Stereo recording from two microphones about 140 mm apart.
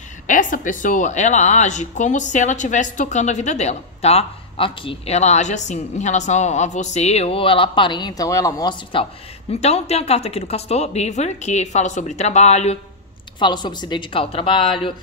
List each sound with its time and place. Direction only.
0.3 s a woman's voice: 70° left (ahead or behind); by 8.7 s 25° left (ahead or behind)
9.5 s speech: 50° left (ahead or behind)
13.4 s speech: 30° left (ahead or behind)